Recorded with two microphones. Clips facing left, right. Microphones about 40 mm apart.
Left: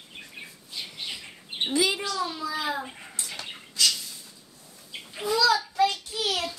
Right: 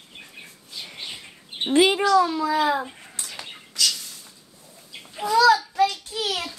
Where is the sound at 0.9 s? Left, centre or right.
Right.